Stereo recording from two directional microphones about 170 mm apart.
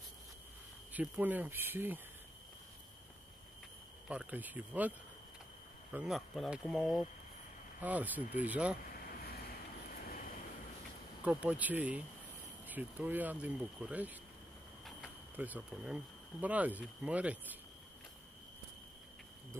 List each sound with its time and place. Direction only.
0.9 s speech: 10° right (ahead or behind)
4.1 s speech: 10° right (ahead or behind)
5.9 s speech: centre (ahead or behind)
10.0 s vehicle: 60° left (ahead or behind)
11.2 s speech: 10° right (ahead or behind)
15.3 s speech: 10° right (ahead or behind)